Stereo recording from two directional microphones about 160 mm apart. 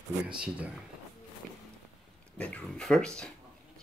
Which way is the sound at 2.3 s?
5° left (ahead or behind).